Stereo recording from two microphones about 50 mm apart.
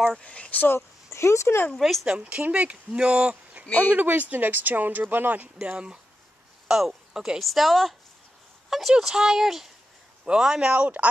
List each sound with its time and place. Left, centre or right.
0.2 s speech: left
0.7 s speech: left
1.8 s speech: centre
2.0 s speech: right
3.6 s speech: left
3.9 s speech: right
6.7 s speech: centre
10.7 s speech: right